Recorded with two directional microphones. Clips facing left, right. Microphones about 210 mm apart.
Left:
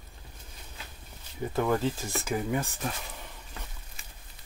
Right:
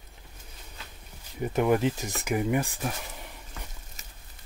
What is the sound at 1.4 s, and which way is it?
Speech, 20° right (ahead or behind).